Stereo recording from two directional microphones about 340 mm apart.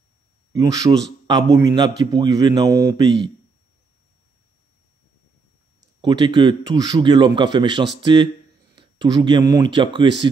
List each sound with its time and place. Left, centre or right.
0.5 s a man's voice: centre
5.8 s a man's voice: centre